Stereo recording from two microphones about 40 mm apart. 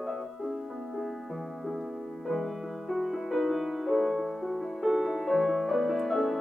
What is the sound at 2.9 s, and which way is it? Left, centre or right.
Music, centre.